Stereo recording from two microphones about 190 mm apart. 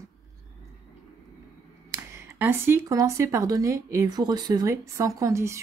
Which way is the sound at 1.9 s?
10° right (ahead or behind).